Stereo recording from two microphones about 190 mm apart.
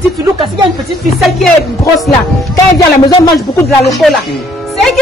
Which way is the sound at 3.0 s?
20° left (ahead or behind).